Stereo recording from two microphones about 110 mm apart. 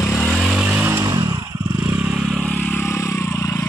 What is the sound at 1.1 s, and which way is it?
Motorcycle, 35° right (ahead or behind).